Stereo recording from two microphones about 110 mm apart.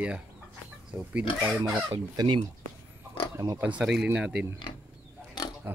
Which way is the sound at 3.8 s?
5° right (ahead or behind).